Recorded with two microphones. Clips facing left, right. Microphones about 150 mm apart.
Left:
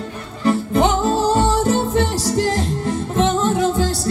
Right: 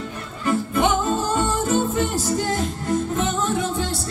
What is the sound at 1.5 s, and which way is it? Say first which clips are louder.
Music: left 4 dB; 85° left.